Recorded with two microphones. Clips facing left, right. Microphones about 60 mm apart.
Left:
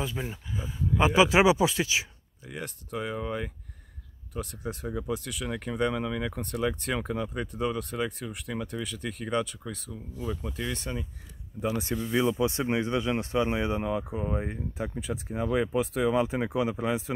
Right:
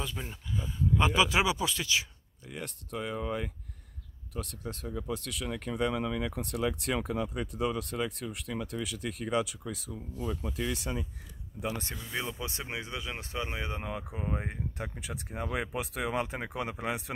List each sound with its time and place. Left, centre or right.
0.0 s speech: centre
2.5 s speech: centre
12.4 s speech: left
13.4 s speech: centre
13.8 s speech: centre
14.7 s speech: centre